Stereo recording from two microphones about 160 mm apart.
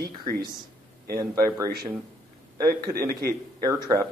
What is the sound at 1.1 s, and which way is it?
Speech, 25° right (ahead or behind).